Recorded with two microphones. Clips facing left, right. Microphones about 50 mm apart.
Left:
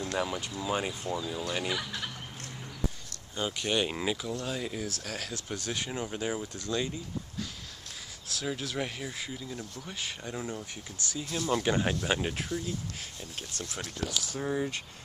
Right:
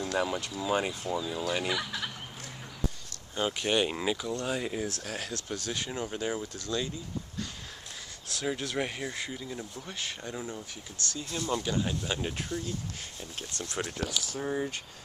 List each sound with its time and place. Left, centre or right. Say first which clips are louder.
0.0 s a sound: right 2 dB; centre
0.5 s speech: right 2 dB; centre
3.3 s speech: right 2 dB; centre
4.5 s speech: right 3 dB; centre
5.3 s speech: even; centre
6.5 s speech: left 1 dB; centre
8.3 s speech: right 2 dB; centre
9.0 s speech: right 2 dB; centre
9.9 s speech: even; centre
11.6 s speech: left 3 dB; left
12.0 s speech: left 3 dB; centre
12.4 s speech: left 1 dB; centre